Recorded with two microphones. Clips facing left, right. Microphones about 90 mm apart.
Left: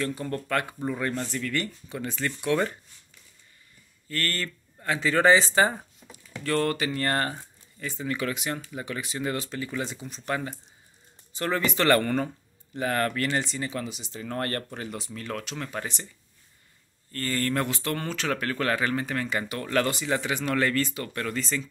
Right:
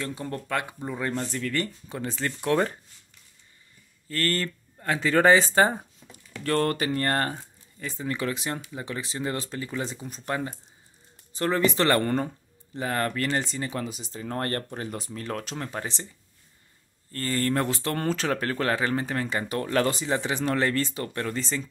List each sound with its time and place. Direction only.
0.0 s speech: 20° right (ahead or behind)
1.3 s speech: 35° right (ahead or behind)
4.1 s speech: 35° right (ahead or behind)
17.1 s speech: 30° right (ahead or behind)